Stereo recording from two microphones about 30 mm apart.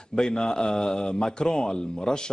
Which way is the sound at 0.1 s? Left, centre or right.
Left.